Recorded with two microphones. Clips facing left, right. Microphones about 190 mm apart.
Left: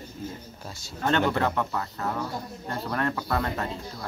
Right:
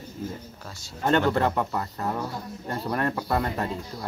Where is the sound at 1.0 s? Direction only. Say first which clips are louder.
Right 2 dB; 10° right (ahead or behind).